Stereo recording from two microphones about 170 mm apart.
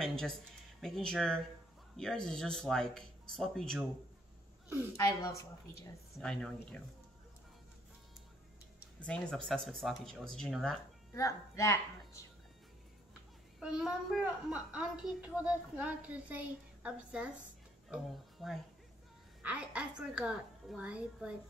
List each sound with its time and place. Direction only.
0.0 s speech: centre (ahead or behind)
4.9 s a woman's voice: 20° left (ahead or behind)
6.1 s speech: 5° left (ahead or behind)
9.0 s speech: 5° left (ahead or behind)
11.1 s a woman's voice: 20° left (ahead or behind)
13.6 s a woman's voice: 5° right (ahead or behind)